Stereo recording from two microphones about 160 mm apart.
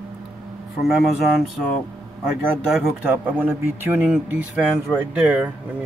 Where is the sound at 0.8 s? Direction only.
Centre (ahead or behind).